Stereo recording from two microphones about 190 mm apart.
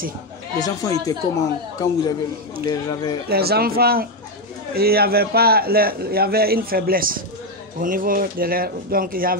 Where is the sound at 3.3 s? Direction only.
55° right (ahead or behind).